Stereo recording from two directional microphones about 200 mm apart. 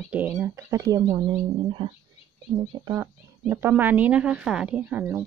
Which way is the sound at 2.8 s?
15° right (ahead or behind).